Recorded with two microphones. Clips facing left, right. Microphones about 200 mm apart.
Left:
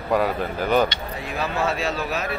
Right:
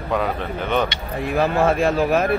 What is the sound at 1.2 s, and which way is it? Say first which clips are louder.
Speech: right 8 dB; 55° right (ahead or behind).